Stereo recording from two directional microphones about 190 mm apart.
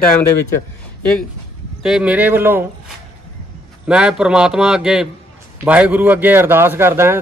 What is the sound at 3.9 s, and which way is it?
A man's voice, 5° right (ahead or behind).